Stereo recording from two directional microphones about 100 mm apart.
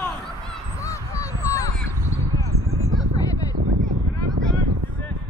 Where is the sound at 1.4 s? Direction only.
30° left (ahead or behind).